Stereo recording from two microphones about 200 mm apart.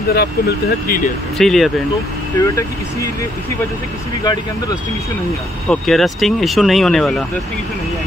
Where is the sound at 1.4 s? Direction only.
Centre (ahead or behind).